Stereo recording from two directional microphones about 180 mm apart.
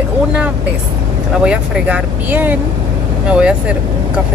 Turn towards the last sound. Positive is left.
turn(degrees=-5)  # may be behind; listen again after turning